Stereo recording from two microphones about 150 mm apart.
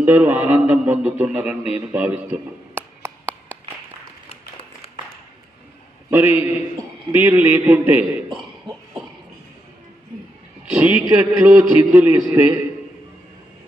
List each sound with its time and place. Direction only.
0.0 s a man's voice: 10° right (ahead or behind)
4.3 s a sound: 40° left (ahead or behind)
6.0 s a man's voice: 15° right (ahead or behind)
10.6 s a man's voice: 5° right (ahead or behind)
11.9 s a man's voice: 15° right (ahead or behind)